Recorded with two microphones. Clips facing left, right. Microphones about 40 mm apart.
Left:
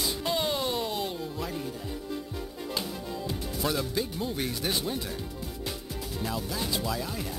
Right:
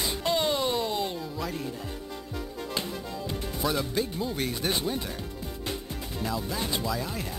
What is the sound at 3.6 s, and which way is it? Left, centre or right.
Speech, centre.